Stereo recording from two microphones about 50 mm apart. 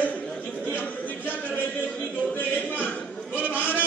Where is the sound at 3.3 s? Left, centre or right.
Right.